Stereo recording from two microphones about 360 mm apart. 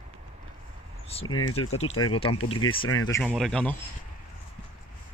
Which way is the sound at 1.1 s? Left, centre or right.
Centre.